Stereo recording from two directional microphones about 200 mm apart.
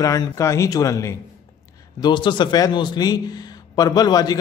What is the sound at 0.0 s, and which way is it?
Speech, 20° left (ahead or behind).